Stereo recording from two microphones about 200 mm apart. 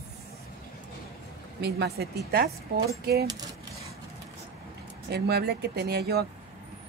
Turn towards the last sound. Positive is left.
turn(degrees=-50)  # may be behind; listen again after turning